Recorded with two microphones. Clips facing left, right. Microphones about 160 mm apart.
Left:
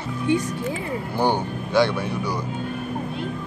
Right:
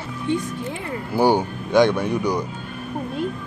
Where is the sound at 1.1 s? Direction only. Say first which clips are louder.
Right 5 dB; 10° right (ahead or behind).